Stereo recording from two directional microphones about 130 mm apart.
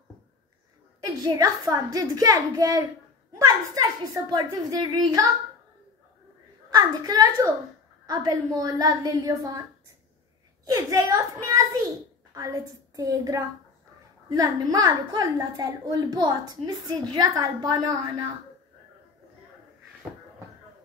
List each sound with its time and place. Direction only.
1.0 s a woman's voice: 30° right (ahead or behind)
6.7 s a woman's voice: 30° right (ahead or behind)
10.6 s a woman's voice: 25° right (ahead or behind)